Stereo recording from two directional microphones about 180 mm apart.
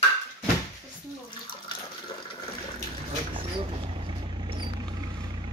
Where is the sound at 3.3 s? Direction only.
30° right (ahead or behind).